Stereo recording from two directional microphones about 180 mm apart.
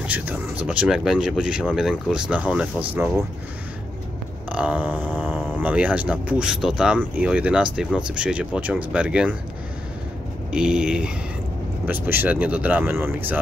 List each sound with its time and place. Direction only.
0.0 s speech: 10° right (ahead or behind)
4.5 s speech: 10° right (ahead or behind)
10.5 s speech: 5° right (ahead or behind)